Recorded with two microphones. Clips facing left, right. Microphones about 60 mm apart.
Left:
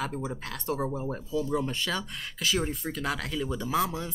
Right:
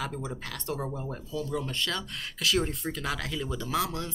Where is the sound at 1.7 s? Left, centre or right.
Centre.